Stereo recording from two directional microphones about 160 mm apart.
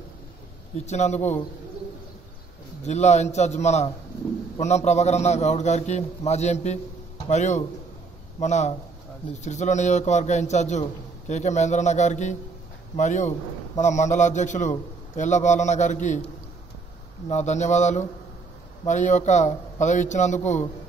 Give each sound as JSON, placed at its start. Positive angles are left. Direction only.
{"t": 0.7, "sound": "a man's voice", "side_deg": 45}
{"t": 2.8, "sound": "a man's voice", "side_deg": 45}
{"t": 17.3, "sound": "a man's voice", "side_deg": 45}